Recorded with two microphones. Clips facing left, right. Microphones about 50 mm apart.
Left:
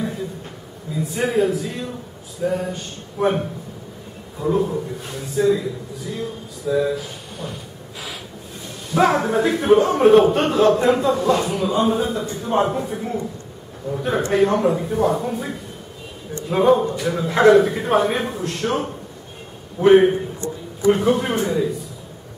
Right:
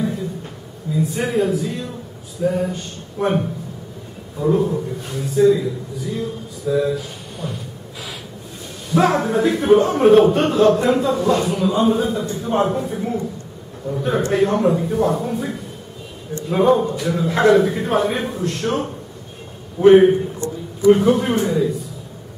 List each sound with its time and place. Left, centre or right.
1.0 s a man's voice: centre
9.2 s a man's voice: centre